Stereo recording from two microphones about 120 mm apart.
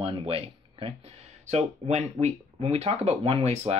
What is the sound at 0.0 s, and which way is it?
Speech, 55° right (ahead or behind).